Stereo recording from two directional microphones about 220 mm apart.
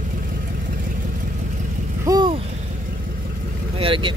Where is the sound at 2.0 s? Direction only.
20° right (ahead or behind).